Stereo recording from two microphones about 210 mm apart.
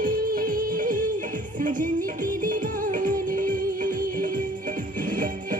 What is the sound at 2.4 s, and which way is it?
Music, 40° right (ahead or behind).